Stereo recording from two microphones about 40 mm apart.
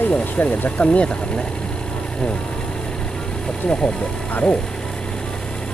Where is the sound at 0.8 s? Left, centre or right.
Left.